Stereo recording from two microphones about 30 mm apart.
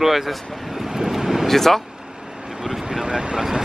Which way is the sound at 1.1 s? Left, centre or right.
Centre.